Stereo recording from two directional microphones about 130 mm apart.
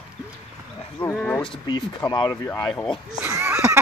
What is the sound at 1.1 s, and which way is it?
Speech, 5° left (ahead or behind).